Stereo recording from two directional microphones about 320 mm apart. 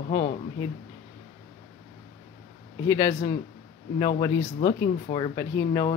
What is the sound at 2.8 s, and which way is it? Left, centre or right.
Speech, centre.